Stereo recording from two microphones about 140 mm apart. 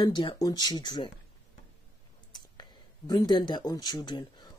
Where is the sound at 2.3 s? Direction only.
30° left (ahead or behind).